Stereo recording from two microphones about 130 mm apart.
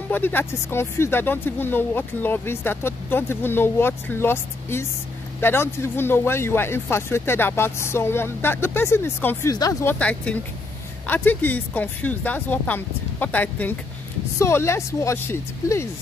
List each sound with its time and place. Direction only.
0.1 s speech: 15° left (ahead or behind)
9.9 s speech: 10° left (ahead or behind)